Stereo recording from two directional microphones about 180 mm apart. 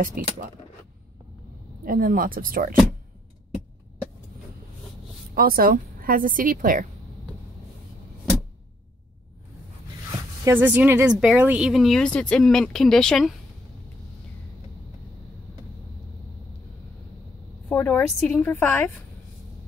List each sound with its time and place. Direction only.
1.9 s a woman's voice: 50° right (ahead or behind)
5.3 s a woman's voice: 55° right (ahead or behind)
10.4 s speech: 10° right (ahead or behind)
17.6 s a woman's voice: 10° left (ahead or behind)